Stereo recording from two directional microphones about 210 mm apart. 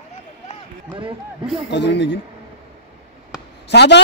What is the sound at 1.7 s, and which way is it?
Speech, 55° left (ahead or behind).